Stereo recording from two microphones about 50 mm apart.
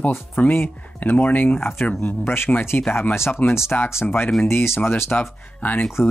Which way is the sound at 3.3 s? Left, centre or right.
Left.